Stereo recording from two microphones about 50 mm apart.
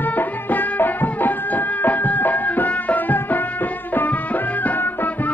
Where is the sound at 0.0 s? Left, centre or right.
Left.